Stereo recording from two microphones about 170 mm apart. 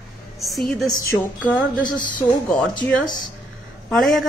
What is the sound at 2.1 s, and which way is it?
Speech, 5° left (ahead or behind).